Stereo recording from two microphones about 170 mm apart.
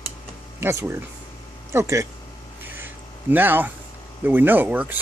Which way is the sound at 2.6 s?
10° right (ahead or behind).